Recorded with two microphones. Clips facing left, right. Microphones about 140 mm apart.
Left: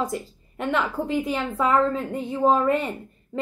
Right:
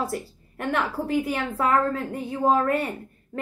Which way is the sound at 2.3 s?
Centre (ahead or behind).